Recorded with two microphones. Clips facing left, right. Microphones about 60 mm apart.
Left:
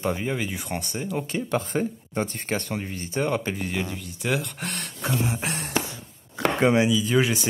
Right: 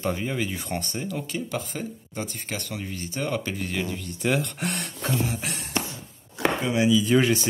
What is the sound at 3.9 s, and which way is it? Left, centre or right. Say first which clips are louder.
Speech: right 2 dB; centre.